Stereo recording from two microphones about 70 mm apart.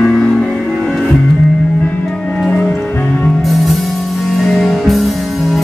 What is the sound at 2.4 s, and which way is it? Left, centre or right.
Music, centre.